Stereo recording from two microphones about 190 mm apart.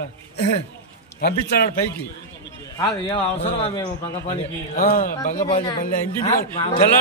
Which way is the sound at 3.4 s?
30° left (ahead or behind).